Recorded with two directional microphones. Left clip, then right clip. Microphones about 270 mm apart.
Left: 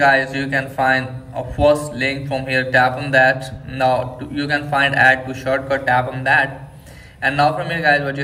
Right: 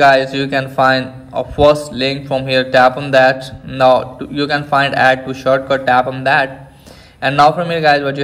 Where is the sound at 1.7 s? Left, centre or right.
Centre.